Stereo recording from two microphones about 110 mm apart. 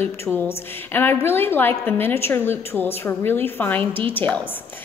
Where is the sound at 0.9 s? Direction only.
20° left (ahead or behind).